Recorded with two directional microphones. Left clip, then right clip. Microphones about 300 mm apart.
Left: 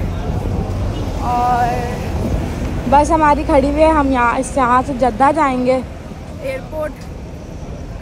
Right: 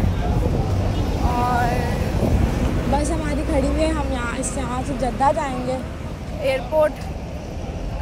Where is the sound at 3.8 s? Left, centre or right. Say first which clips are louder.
Left 11 dB; centre.